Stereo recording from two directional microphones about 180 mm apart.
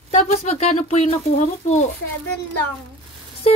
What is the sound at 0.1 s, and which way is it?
Speech, 40° left (ahead or behind).